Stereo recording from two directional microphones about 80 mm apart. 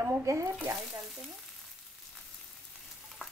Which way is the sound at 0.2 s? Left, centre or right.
Right.